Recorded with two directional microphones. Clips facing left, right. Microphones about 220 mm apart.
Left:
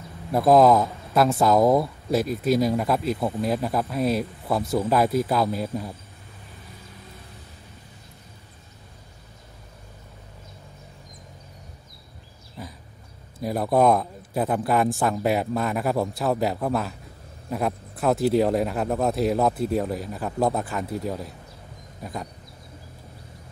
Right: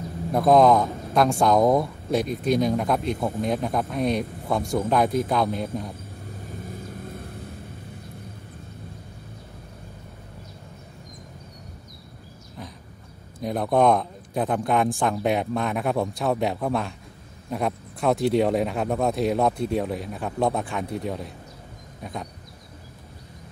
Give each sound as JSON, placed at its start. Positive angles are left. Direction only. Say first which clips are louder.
{"t": 0.3, "sound": "speech", "louder": "left 1 dB", "side_deg": 0}
{"t": 6.6, "sound": "vehicle", "louder": "right 11 dB", "side_deg": -50}
{"t": 12.6, "sound": "dog", "louder": "left 1 dB", "side_deg": 5}
{"t": 13.4, "sound": "speech", "louder": "even", "side_deg": 5}